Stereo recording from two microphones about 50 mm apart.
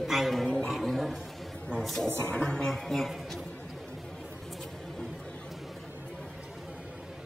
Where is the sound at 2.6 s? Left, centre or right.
Centre.